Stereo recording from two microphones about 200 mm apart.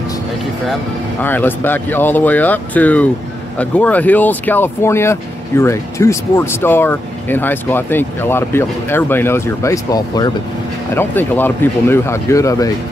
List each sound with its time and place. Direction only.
1.2 s speech: 10° left (ahead or behind)